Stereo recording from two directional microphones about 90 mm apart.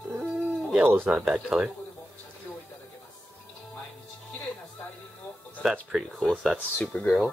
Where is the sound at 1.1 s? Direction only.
10° right (ahead or behind).